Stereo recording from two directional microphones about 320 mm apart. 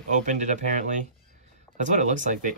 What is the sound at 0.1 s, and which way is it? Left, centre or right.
Speech, right.